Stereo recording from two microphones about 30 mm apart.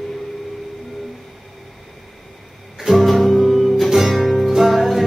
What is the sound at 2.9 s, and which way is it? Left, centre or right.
Music, centre.